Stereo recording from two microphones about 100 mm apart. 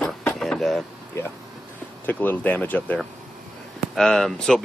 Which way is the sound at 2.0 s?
15° left (ahead or behind).